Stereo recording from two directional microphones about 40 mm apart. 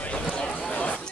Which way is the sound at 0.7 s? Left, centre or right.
Left.